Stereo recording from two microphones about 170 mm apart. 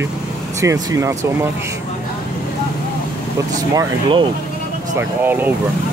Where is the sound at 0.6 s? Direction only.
20° right (ahead or behind).